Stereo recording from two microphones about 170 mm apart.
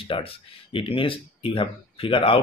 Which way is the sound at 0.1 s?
30° left (ahead or behind).